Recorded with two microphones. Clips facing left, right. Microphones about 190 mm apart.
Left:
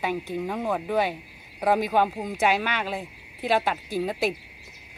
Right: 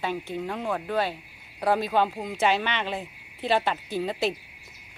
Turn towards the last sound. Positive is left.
turn(degrees=10)  # may be behind; listen again after turning